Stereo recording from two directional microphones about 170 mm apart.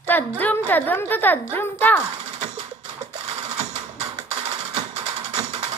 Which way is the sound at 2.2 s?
35° right (ahead or behind).